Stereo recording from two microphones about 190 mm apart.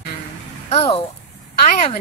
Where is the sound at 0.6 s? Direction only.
35° left (ahead or behind).